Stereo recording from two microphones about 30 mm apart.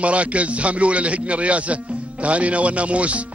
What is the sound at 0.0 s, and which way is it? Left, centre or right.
Speech, right.